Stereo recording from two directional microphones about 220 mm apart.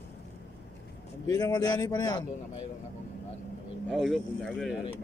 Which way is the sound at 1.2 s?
15° left (ahead or behind).